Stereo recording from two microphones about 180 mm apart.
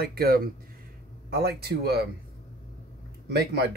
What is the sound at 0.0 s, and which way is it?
Speech, 60° right (ahead or behind).